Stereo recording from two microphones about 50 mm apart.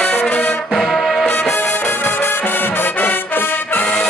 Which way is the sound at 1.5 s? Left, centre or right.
Left.